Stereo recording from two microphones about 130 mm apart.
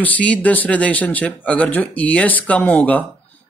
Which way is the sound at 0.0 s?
10° left (ahead or behind).